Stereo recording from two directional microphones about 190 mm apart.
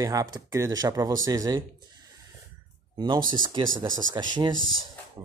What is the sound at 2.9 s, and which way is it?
Speech, 25° right (ahead or behind).